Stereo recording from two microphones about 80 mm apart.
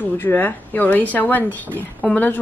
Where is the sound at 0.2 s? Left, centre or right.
Left.